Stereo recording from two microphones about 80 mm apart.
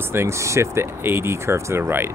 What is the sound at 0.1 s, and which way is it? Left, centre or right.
Speech, right.